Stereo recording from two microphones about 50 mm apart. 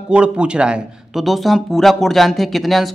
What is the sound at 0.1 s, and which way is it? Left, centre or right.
Speech, right.